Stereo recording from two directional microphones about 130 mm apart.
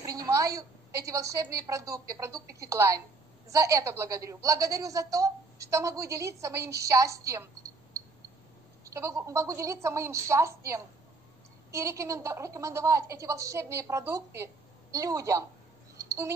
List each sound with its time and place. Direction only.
0.0 s a woman's voice: 25° right (ahead or behind)
8.9 s a woman's voice: 25° right (ahead or behind)
16.0 s a sound: 20° right (ahead or behind)